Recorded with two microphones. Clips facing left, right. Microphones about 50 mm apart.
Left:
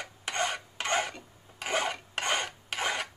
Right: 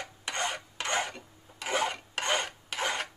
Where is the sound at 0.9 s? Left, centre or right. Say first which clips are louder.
Left 1 dB; centre.